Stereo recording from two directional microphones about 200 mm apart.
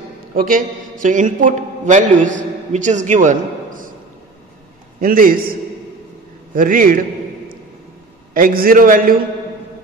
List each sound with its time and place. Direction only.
0.3 s a man's voice: 45° right (ahead or behind)
5.0 s a man's voice: 45° right (ahead or behind)
8.3 s a man's voice: 45° right (ahead or behind)